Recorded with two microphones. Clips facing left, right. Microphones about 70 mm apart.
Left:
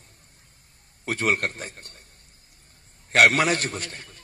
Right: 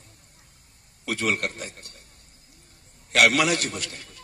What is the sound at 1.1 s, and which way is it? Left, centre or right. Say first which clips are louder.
Speech: left 2 dB; left.